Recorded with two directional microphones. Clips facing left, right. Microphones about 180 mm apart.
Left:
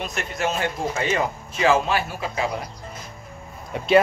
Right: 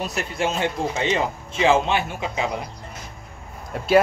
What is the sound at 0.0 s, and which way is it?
Speech, 35° right (ahead or behind).